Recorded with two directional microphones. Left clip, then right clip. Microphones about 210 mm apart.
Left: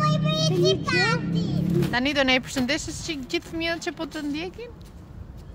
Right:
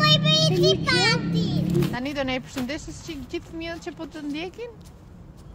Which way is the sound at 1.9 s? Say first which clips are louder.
Left 6 dB; 10° left (ahead or behind).